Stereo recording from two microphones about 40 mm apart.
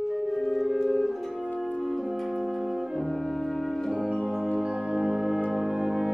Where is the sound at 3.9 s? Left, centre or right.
Centre.